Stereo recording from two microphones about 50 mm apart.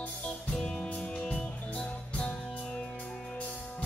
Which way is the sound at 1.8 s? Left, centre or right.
Left.